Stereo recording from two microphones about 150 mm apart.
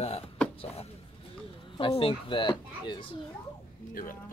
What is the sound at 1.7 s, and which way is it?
Speech, 35° left (ahead or behind).